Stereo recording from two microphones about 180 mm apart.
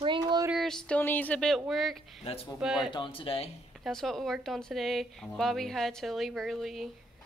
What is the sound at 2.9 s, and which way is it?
Speech, 30° left (ahead or behind).